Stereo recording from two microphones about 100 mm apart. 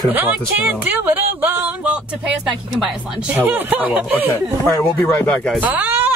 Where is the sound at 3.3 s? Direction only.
20° right (ahead or behind).